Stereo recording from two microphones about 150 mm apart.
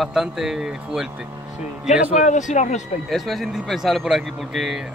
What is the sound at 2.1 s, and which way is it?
Speech, 55° left (ahead or behind).